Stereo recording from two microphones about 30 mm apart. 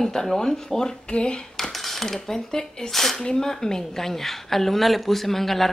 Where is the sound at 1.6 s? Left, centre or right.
Centre.